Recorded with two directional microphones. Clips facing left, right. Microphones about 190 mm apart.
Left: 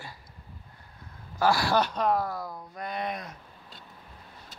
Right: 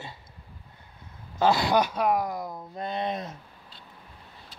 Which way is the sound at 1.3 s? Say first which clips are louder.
Right 2 dB; 20° right (ahead or behind).